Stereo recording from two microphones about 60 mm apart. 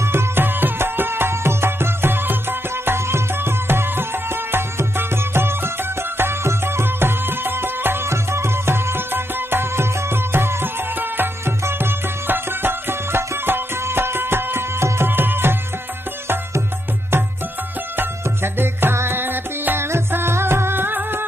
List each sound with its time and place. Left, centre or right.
0.0 s music: right
17.9 s music: right